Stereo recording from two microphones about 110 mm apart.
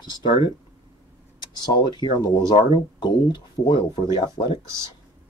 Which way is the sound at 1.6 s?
40° left (ahead or behind).